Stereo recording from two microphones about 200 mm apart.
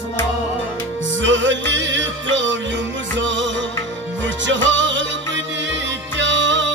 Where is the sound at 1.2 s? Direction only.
65° right (ahead or behind).